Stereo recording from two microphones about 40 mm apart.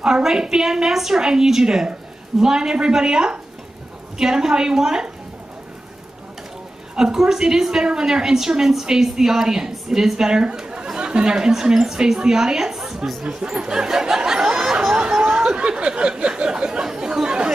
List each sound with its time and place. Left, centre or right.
0.0 s a woman's voice: centre
7.0 s a woman's voice: centre
13.2 s a sound: right